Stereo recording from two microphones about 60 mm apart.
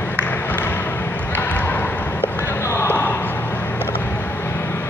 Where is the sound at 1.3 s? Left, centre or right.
Left.